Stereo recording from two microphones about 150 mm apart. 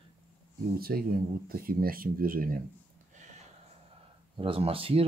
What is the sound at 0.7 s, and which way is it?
Speech, 85° right.